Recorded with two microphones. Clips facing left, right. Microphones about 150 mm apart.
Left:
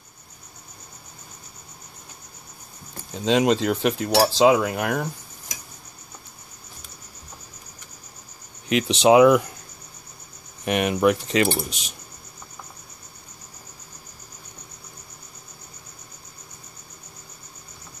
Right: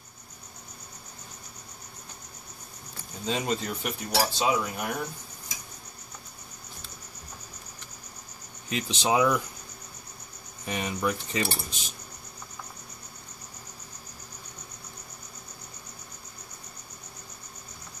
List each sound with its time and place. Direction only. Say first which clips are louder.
3.3 s cutlery: left 10 dB; 90° left
8.6 s speech: left 11 dB; 70° left (ahead or behind)
10.6 s speech: left 10 dB; 70° left (ahead or behind)